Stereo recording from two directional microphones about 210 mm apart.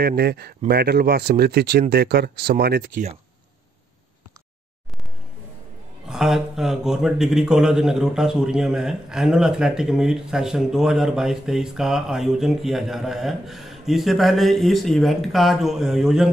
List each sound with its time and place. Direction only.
0.0 s speech: 50° right (ahead or behind)
6.0 s speech: centre (ahead or behind)